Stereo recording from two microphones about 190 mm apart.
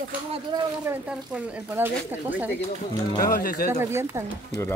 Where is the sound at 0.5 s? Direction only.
25° right (ahead or behind).